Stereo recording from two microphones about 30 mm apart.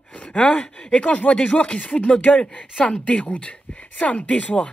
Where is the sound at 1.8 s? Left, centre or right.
Left.